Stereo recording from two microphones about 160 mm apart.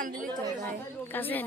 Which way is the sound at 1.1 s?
10° left (ahead or behind).